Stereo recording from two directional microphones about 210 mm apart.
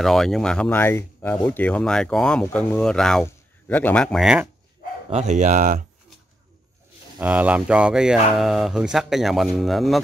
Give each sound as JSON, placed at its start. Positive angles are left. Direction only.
{"t": 0.0, "sound": "speech", "side_deg": 0}
{"t": 5.1, "sound": "speech", "side_deg": -35}
{"t": 7.2, "sound": "speech", "side_deg": -5}